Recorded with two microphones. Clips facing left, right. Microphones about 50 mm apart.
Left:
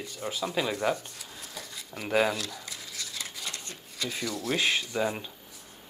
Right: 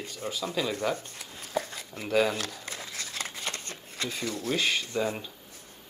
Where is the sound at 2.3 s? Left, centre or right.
Right.